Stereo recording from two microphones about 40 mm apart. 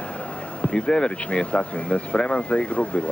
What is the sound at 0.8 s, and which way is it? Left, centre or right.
Speech, left.